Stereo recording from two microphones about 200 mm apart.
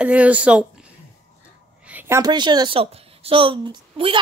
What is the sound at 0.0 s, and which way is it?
Speech, 5° right (ahead or behind).